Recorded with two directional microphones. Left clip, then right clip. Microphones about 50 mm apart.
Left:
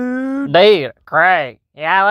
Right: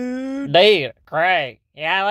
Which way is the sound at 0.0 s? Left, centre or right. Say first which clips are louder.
Left 6 dB; left.